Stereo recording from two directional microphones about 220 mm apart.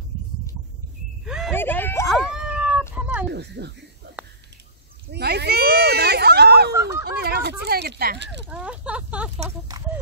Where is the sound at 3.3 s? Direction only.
50° right (ahead or behind).